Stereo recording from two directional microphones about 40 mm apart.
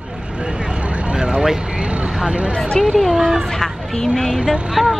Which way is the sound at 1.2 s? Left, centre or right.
Centre.